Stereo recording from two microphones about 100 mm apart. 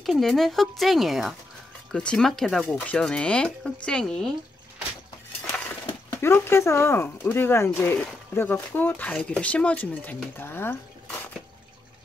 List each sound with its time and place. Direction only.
0.0 s speech: centre (ahead or behind)
6.2 s speech: 25° left (ahead or behind)